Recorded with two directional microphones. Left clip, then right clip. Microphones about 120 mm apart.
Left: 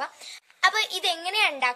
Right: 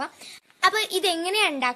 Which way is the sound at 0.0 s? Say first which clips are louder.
Even; 25° right (ahead or behind).